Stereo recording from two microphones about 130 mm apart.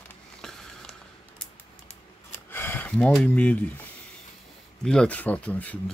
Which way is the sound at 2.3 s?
20° left (ahead or behind).